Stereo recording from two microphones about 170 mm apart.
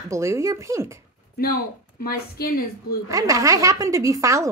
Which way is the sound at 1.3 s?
60° left (ahead or behind).